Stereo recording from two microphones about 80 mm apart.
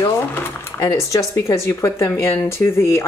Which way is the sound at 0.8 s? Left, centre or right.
Left.